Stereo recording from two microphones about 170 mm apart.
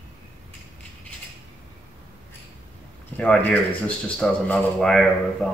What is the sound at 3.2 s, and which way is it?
Speech, 5° left (ahead or behind).